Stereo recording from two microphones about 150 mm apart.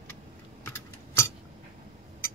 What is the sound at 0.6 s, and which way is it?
Typing, 20° left (ahead or behind).